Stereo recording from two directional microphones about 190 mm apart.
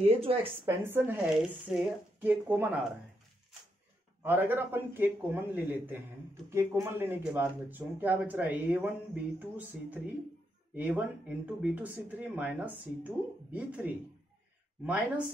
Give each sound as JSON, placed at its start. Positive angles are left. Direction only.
{"t": 0.0, "sound": "speech", "side_deg": -30}
{"t": 0.7, "sound": "speech", "side_deg": -10}
{"t": 4.2, "sound": "speech", "side_deg": -10}